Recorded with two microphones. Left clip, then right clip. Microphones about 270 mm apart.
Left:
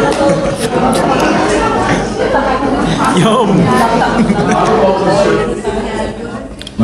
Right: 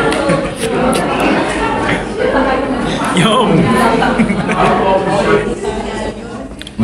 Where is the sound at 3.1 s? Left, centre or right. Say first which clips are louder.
Right 1 dB; left.